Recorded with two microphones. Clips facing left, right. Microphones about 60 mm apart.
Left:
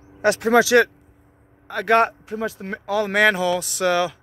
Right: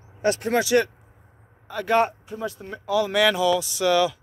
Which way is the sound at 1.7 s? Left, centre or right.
Left.